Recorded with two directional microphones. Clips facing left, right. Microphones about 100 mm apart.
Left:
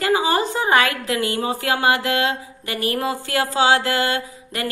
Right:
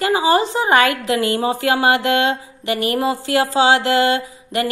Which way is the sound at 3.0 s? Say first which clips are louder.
Right 4 dB; 20° right (ahead or behind).